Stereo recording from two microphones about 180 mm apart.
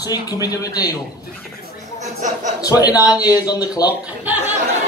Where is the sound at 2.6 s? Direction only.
20° left (ahead or behind).